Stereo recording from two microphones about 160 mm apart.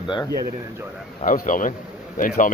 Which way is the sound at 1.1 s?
55° left (ahead or behind).